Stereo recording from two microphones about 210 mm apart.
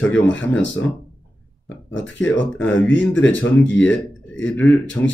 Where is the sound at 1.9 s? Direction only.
60° left (ahead or behind).